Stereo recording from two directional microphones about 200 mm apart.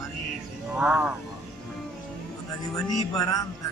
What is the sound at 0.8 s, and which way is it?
Speech, 5° right (ahead or behind).